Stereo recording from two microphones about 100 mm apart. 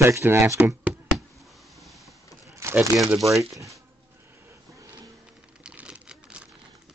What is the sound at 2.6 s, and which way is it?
Crumpling, 30° right (ahead or behind).